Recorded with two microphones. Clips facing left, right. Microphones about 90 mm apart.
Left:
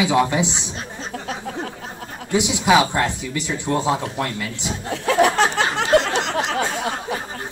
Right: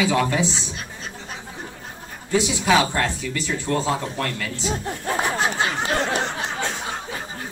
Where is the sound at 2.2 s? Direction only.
20° left (ahead or behind).